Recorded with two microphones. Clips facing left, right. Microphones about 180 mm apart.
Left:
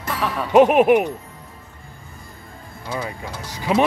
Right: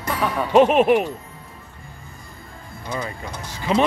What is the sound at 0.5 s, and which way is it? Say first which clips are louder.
Speech: left 2 dB; 15° left (ahead or behind).